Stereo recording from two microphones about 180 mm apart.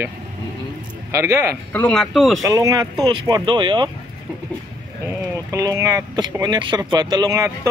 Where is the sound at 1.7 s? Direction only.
5° left (ahead or behind).